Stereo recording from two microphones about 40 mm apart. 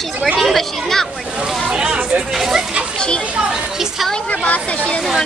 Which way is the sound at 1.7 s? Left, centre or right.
Right.